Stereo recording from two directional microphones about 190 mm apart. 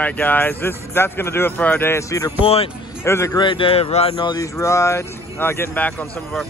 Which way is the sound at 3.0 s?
15° left (ahead or behind).